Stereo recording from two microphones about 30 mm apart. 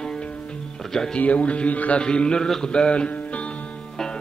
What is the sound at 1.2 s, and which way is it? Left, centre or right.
Speech, left.